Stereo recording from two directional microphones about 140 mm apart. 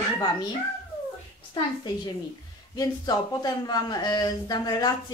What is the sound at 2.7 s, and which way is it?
Speech, 30° left (ahead or behind).